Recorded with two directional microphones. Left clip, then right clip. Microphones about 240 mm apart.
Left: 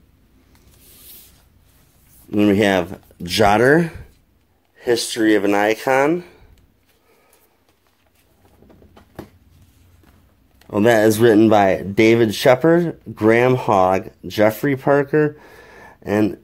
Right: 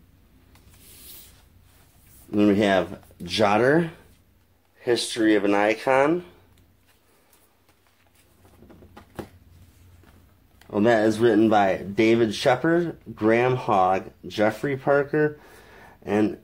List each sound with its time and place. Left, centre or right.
2.3 s speech: left
10.7 s speech: left